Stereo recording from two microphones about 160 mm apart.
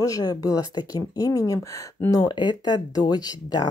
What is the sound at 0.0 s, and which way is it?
Speech, 25° left (ahead or behind).